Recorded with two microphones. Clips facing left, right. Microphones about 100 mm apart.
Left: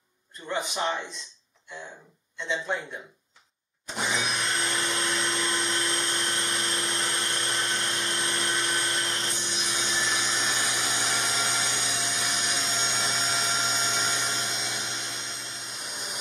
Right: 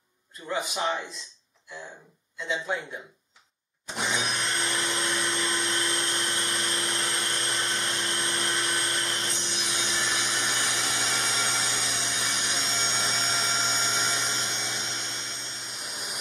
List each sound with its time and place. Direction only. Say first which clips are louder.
0.5 s a man's voice: even; centre (ahead or behind)
2.4 s a man's voice: even; 5° right (ahead or behind)
3.9 s vacuum cleaner: even; centre (ahead or behind)
10.0 s a sound: left 1 dB; centre (ahead or behind)
11.9 s vacuum cleaner: left 1 dB; centre (ahead or behind)
15.8 s tools: even; centre (ahead or behind)